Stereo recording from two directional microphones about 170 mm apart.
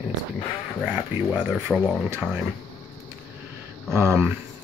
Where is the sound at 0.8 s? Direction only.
5° right (ahead or behind).